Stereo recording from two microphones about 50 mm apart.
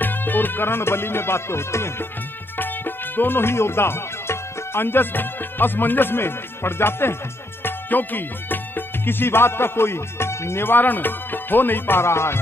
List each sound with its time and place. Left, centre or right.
0.0 s music: left
2.5 s speech: left
7.6 s music: left
10.7 s music: left